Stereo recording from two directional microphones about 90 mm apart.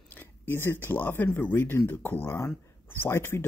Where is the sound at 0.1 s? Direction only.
25° left (ahead or behind).